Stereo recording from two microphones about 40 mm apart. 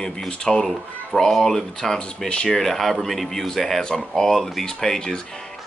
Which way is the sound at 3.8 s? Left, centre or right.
Centre.